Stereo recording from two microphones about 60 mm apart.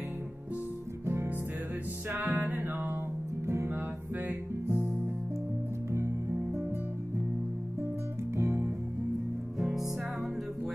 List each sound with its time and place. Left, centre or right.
1.0 s music: right
2.0 s music: right
3.4 s music: right
5.9 s music: right
8.4 s music: right